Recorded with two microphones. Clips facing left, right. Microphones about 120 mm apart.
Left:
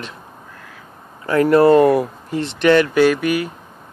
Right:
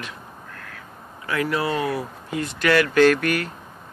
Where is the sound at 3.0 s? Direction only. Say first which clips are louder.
Left 2 dB; 10° left (ahead or behind).